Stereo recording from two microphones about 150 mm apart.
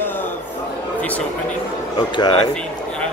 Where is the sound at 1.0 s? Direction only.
10° left (ahead or behind).